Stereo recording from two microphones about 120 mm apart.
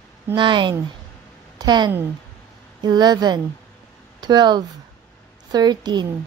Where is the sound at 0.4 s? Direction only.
40° right (ahead or behind).